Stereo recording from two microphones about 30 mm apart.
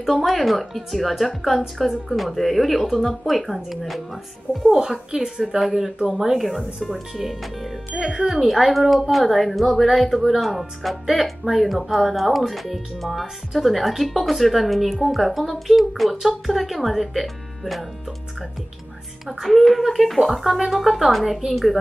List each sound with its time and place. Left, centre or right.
0.0 s speech: centre
4.6 s a child's voice: right
5.9 s speech: right
6.9 s speech: centre
8.0 s a child's voice: right
8.3 s speech: centre
19.2 s speech: centre